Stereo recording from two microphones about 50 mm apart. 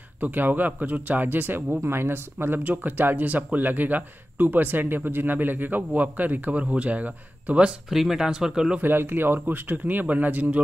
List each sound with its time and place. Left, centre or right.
0.2 s speech: right
1.8 s speech: right
6.6 s speech: right
7.9 s speech: centre
8.8 s speech: right